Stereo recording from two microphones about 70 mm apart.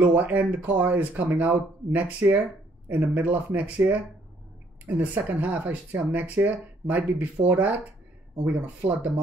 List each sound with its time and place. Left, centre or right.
0.0 s speech: right
5.1 s speech: right